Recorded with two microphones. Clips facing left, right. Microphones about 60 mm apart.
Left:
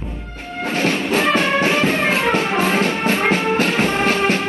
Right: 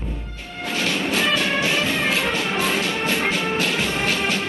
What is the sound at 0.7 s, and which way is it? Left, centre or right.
Music, left.